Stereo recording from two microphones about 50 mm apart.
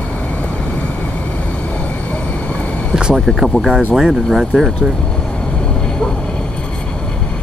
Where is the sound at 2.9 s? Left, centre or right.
Centre.